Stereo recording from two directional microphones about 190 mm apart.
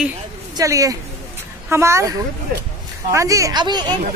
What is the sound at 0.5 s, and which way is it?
Speech, 15° right (ahead or behind).